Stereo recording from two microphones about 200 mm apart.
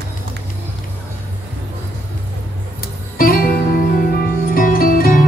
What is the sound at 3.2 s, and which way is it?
Music, 50° left (ahead or behind).